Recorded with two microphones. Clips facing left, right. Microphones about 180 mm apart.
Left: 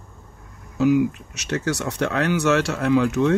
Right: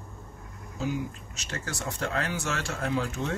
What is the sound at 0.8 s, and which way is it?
Speech, 70° left (ahead or behind).